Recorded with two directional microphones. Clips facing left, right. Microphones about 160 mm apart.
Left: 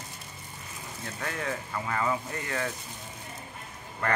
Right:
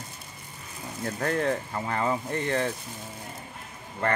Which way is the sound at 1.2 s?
40° right (ahead or behind).